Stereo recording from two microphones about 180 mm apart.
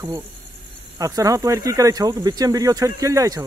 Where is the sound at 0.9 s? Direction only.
20° right (ahead or behind).